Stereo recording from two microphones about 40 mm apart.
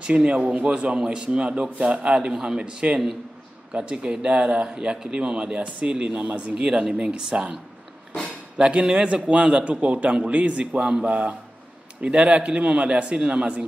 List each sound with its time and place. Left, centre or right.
0.0 s a man's voice: right
2.1 s a man's voice: centre; by 6.5 s right
6.5 s a man's voice: centre
7.3 s speech: right
8.5 s a man's voice: right
10.7 s a man's voice: right